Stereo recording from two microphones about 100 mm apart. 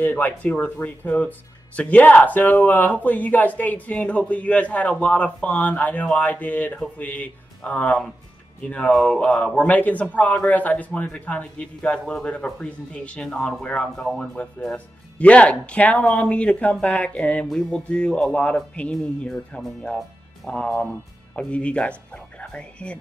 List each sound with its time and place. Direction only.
0.0 s speech: 15° left (ahead or behind)